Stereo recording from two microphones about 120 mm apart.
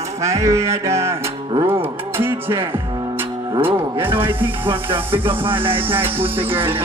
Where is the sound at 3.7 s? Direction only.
15° right (ahead or behind).